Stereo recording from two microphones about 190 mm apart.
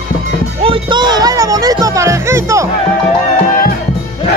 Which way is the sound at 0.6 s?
25° right (ahead or behind).